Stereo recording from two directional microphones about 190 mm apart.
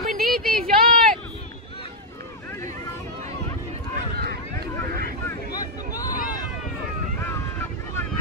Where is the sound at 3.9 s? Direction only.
55° right (ahead or behind).